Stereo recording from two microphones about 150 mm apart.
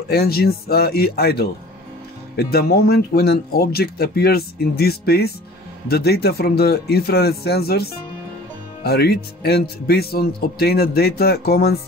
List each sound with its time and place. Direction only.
0.1 s a man's voice: 90° left